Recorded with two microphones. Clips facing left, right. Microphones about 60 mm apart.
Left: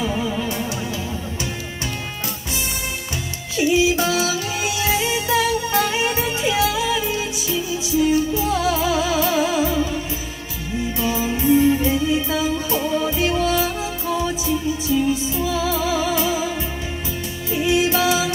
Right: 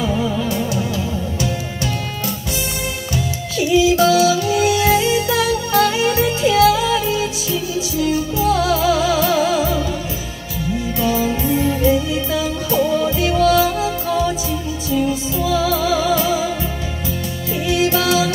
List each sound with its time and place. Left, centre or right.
3.5 s music: left
11.0 s music: left
17.6 s music: left